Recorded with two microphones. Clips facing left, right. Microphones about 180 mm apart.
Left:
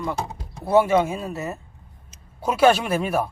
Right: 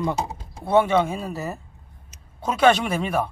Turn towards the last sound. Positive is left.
turn(degrees=5)  # may be behind; listen again after turning